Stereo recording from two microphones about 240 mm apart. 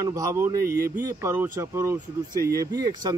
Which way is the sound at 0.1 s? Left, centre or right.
Centre.